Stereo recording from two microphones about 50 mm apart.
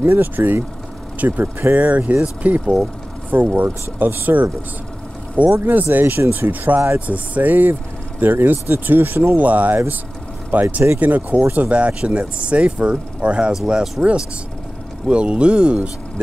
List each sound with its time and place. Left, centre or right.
0.0 s speech: right
5.6 s speech: right